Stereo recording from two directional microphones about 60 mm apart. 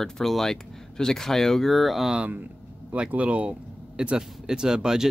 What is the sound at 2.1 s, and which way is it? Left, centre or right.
Speech, right.